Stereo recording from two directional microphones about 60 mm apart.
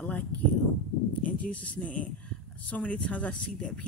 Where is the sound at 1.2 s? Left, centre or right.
Left.